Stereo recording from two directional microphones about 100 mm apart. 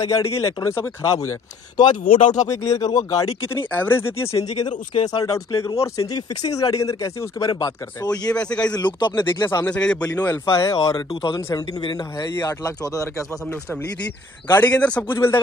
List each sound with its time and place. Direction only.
0.0 s speech: 30° left (ahead or behind)
1.8 s speech: 45° left (ahead or behind)
3.3 s speech: 20° left (ahead or behind)
4.6 s speech: 45° left (ahead or behind)
5.2 s speech: 30° left (ahead or behind)
8.3 s a man's voice: 10° left (ahead or behind)
8.7 s speech: 45° left (ahead or behind)
9.7 s a man's voice: 10° left (ahead or behind)
10.6 s speech: 35° left (ahead or behind)
11.1 s speech: 55° left (ahead or behind)
12.4 s speech: 35° left (ahead or behind)
14.6 s a man's voice: 15° left (ahead or behind)